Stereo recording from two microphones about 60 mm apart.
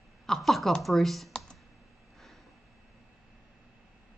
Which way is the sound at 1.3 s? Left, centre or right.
Centre.